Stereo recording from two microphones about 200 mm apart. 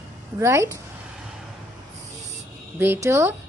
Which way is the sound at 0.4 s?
15° right (ahead or behind).